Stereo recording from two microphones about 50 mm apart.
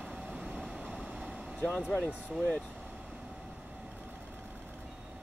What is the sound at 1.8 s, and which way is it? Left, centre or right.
Speech, right.